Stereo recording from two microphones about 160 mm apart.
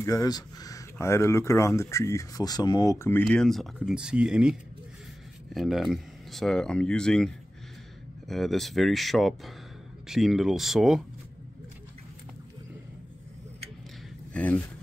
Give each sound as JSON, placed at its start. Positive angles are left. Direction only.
{"t": 0.0, "sound": "speech", "side_deg": 20}
{"t": 14.3, "sound": "speech", "side_deg": 10}